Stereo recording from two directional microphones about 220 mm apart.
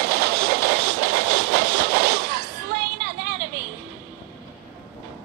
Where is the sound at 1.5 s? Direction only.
50° right (ahead or behind).